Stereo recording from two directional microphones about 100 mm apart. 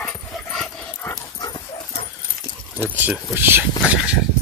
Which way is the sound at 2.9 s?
20° right (ahead or behind).